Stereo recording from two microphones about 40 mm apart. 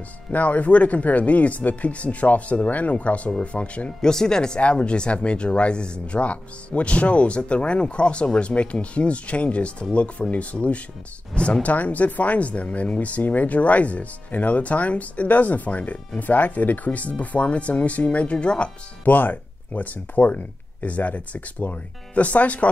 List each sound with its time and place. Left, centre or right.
0.3 s speech: left
4.0 s speech: centre
4.6 s speech: left
19.0 s speech: left